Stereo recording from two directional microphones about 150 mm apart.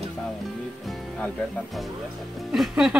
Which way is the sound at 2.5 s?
5° right (ahead or behind).